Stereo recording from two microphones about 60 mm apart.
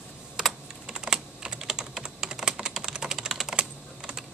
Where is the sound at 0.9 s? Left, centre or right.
Centre.